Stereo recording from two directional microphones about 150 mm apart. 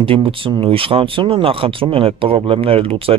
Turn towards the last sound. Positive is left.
turn(degrees=-40)  # may be behind; listen again after turning